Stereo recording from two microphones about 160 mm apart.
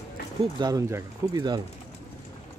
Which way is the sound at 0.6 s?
25° right (ahead or behind).